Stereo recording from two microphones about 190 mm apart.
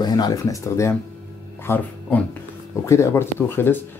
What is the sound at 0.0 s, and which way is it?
Speech, 20° left (ahead or behind).